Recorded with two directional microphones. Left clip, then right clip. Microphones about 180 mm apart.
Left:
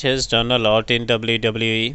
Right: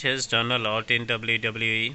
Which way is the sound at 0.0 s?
40° left (ahead or behind).